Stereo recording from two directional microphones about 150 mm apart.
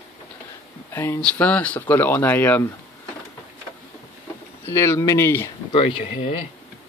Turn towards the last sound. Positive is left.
turn(degrees=40)  # may be behind; listen again after turning